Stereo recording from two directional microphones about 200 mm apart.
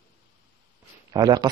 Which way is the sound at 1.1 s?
20° right (ahead or behind).